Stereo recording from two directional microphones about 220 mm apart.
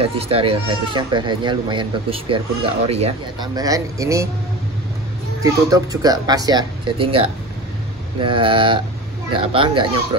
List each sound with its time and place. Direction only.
0.0 s speech: 25° right (ahead or behind)
3.5 s speech: 15° right (ahead or behind)
5.4 s speech: 15° right (ahead or behind)